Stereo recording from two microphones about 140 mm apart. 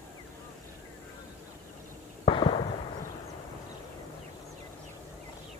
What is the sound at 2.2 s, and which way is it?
Fireworks, 35° left (ahead or behind).